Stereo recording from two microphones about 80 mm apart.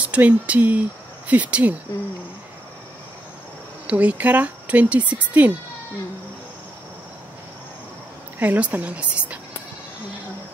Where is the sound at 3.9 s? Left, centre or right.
Centre.